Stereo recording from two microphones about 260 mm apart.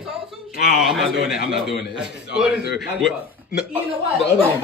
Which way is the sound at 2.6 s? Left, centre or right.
Left.